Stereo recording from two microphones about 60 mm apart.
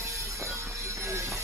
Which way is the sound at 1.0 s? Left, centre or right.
Right.